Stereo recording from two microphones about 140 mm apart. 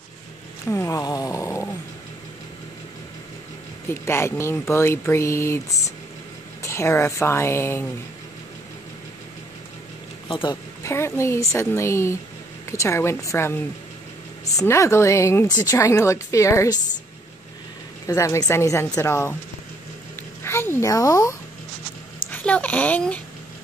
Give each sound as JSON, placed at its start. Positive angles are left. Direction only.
{"t": 0.7, "sound": "dog", "side_deg": 20}
{"t": 3.9, "sound": "speech", "side_deg": 20}
{"t": 10.2, "sound": "speech", "side_deg": 35}
{"t": 10.8, "sound": "speech", "side_deg": 20}
{"t": 18.0, "sound": "speech", "side_deg": 20}
{"t": 20.2, "sound": "a sound", "side_deg": 15}
{"t": 22.3, "sound": "speech", "side_deg": 10}